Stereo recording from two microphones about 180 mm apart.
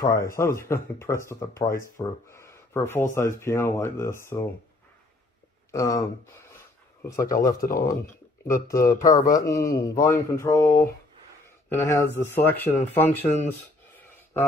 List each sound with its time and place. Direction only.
0.0 s speech: 20° left (ahead or behind)
5.7 s speech: 20° left (ahead or behind)
7.2 s speech: 50° left (ahead or behind)
8.6 s speech: 15° left (ahead or behind)